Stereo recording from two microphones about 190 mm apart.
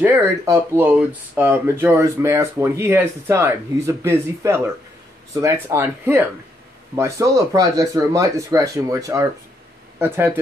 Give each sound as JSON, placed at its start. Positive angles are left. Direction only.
{"t": 0.0, "sound": "speech", "side_deg": -10}